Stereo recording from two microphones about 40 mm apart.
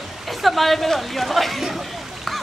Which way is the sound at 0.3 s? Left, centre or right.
Centre.